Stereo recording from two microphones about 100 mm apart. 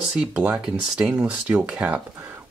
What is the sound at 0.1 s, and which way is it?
Speech, 10° right (ahead or behind).